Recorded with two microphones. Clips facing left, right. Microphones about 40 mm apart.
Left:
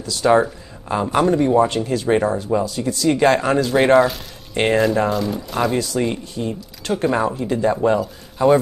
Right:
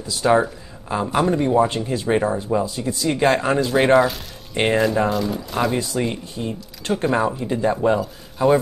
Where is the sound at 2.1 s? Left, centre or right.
Centre.